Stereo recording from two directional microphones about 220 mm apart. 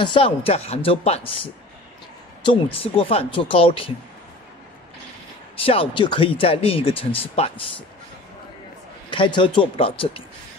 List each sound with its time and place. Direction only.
0.0 s speech: 25° left (ahead or behind)
5.6 s speech: 25° left (ahead or behind)
9.1 s speech: 20° left (ahead or behind)